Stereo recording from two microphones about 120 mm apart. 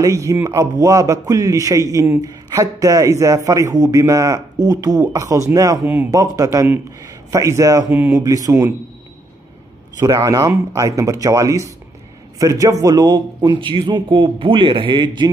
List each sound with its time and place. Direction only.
0.0 s a man's voice: 25° right (ahead or behind)
9.9 s a man's voice: 30° right (ahead or behind)